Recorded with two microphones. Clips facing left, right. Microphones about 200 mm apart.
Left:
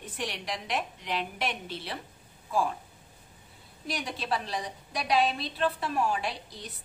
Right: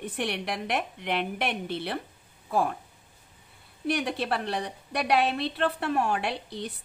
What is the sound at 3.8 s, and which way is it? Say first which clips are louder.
A woman's voice: right 6 dB; 60° right (ahead or behind).